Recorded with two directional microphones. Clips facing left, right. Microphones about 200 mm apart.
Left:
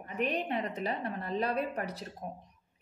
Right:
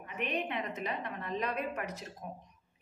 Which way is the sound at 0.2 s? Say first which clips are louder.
Left 3 dB; 35° left (ahead or behind).